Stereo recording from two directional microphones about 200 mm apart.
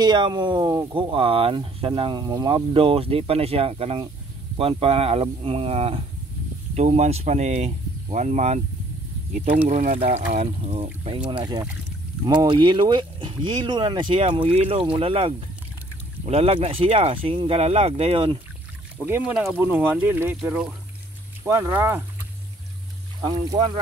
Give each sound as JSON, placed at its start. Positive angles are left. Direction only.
{"t": 0.0, "sound": "speech", "side_deg": -20}
{"t": 19.0, "sound": "speech", "side_deg": -10}
{"t": 23.2, "sound": "speech", "side_deg": -20}